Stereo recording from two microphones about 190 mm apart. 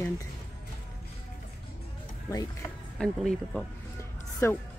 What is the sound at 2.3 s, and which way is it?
Speech, 20° left (ahead or behind).